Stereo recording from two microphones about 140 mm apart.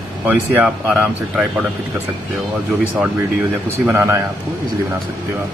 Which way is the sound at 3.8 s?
15° right (ahead or behind).